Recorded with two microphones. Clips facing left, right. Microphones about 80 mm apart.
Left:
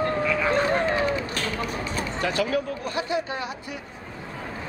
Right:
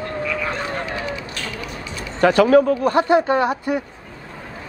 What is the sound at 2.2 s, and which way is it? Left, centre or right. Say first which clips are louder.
Speech: right 13 dB; right.